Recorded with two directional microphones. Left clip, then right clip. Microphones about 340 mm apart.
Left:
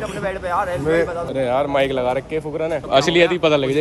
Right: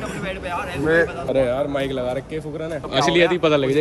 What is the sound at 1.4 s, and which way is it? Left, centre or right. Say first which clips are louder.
A man's voice: left 3 dB; centre.